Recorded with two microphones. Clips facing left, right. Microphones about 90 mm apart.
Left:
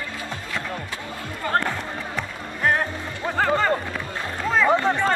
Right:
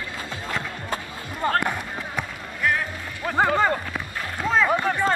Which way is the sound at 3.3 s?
15° right (ahead or behind).